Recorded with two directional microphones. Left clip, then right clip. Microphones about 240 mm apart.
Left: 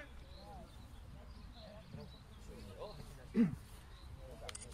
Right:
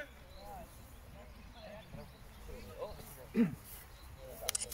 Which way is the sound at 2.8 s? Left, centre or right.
Left.